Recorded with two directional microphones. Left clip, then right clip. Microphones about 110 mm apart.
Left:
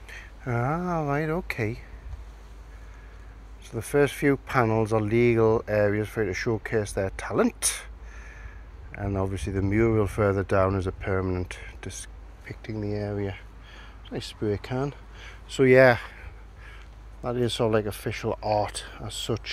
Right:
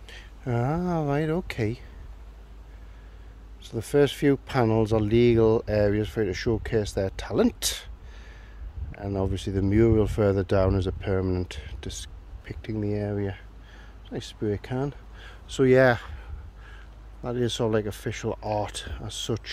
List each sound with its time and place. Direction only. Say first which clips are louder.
0.0 s speech: even; 70° right (ahead or behind)
3.7 s speech: right 1 dB; 65° right (ahead or behind)
8.9 s speech: even; 85° right; by 13.4 s 55° right (ahead or behind)
13.7 s speech: left 1 dB; 25° right (ahead or behind); by 19.5 s 40° right (ahead or behind)